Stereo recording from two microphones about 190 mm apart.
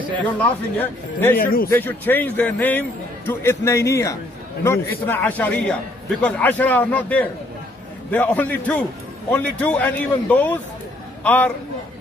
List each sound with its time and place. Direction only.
0.2 s a man's voice: 10° left (ahead or behind)
1.4 s a man's voice: 50° left (ahead or behind)
1.7 s a man's voice: 10° left (ahead or behind)